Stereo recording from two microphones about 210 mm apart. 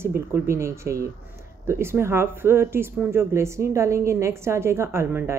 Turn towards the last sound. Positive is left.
turn(degrees=-10)  # may be behind; listen again after turning